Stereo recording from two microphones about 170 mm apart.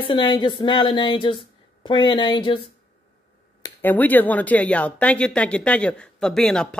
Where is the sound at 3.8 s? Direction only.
10° left (ahead or behind).